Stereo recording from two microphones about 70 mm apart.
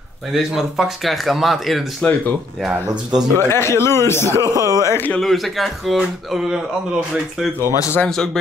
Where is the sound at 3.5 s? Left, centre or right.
Left.